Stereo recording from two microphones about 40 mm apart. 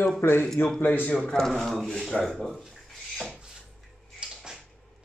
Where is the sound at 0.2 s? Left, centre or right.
Left.